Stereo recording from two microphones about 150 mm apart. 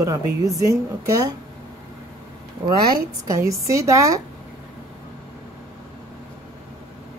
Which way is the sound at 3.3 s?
20° right (ahead or behind).